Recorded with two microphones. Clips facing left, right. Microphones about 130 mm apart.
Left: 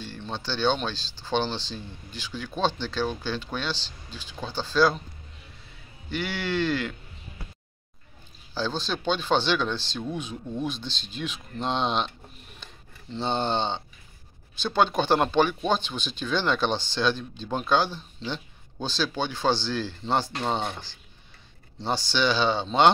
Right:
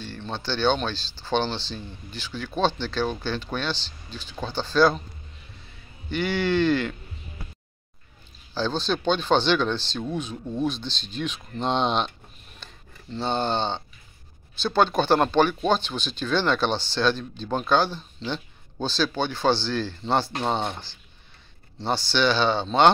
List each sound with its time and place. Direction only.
0.0 s speech: 10° left (ahead or behind)
6.0 s speech: 5° left (ahead or behind)
8.5 s speech: 10° left (ahead or behind)
10.3 s speech: 10° right (ahead or behind)
10.6 s speech: 10° left (ahead or behind)
13.1 s speech: 20° left (ahead or behind)
20.3 s speech: 20° right (ahead or behind)
21.7 s speech: 15° left (ahead or behind)